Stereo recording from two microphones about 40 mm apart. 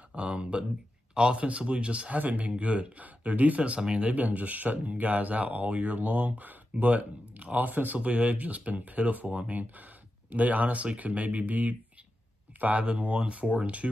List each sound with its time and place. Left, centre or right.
0.1 s speech: right
2.1 s speech: right
5.7 s speech: right
5.9 s speech: right